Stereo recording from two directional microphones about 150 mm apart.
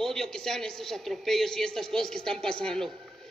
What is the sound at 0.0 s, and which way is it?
A man's voice, 5° left (ahead or behind).